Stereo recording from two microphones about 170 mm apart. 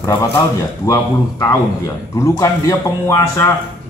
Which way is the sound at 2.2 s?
20° left (ahead or behind).